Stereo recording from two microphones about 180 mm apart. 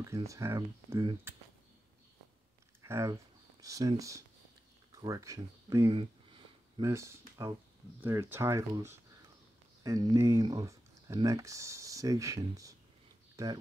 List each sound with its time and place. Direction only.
0.1 s speech: 15° right (ahead or behind)
2.8 s speech: 15° right (ahead or behind)
5.9 s a sound: 30° right (ahead or behind)
6.9 s speech: 15° right (ahead or behind)